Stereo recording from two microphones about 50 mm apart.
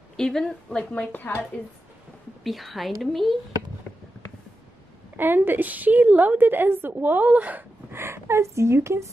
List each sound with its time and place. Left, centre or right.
0.2 s a woman's voice: centre
1.1 s a woman's voice: left
2.4 s a woman's voice: centre
5.1 s a woman's voice: right
7.9 s a woman's voice: right